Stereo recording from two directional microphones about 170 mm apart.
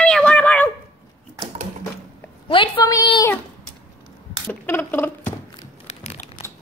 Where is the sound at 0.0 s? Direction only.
5° left (ahead or behind).